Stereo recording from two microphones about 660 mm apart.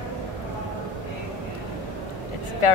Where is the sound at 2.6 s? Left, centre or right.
Left.